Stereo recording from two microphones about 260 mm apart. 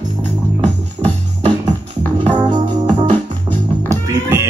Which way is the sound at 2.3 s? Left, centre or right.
Centre.